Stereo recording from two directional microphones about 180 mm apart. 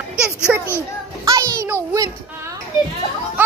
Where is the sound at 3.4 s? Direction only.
10° right (ahead or behind).